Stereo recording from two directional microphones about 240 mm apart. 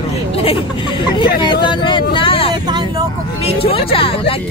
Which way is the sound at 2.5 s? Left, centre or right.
Centre.